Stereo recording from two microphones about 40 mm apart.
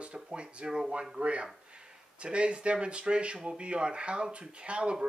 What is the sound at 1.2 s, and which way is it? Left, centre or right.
Speech, right.